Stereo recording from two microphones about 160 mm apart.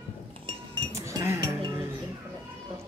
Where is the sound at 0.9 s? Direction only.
20° right (ahead or behind).